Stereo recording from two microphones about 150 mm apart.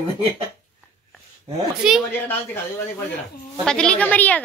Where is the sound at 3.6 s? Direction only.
5° left (ahead or behind).